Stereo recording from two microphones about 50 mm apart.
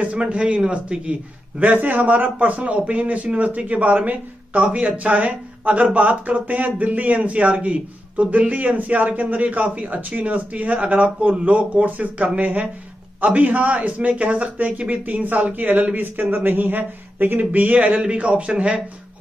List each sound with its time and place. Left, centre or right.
0.0 s a man's voice: right
1.6 s a man's voice: right